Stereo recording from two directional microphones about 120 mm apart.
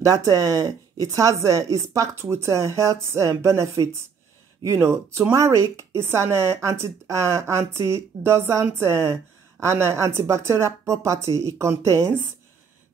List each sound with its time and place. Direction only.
0.0 s speech: 30° right (ahead or behind)